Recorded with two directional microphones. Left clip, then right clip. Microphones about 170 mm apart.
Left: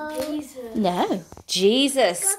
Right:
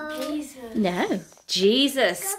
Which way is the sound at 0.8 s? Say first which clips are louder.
Left 2 dB; 5° left (ahead or behind).